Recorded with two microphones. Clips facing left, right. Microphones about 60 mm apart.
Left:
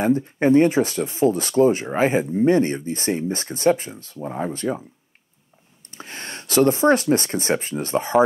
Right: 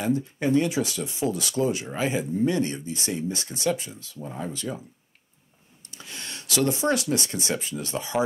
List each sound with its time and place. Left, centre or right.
0.0 s speech: left
5.9 s speech: left